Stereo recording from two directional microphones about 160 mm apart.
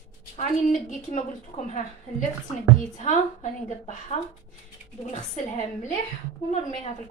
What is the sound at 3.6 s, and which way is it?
A woman's voice, 50° left (ahead or behind).